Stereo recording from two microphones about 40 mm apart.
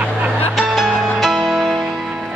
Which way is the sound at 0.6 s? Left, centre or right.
Centre.